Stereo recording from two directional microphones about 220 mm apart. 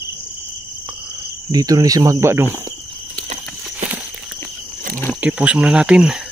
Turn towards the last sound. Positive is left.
turn(degrees=-5)  # may be behind; listen again after turning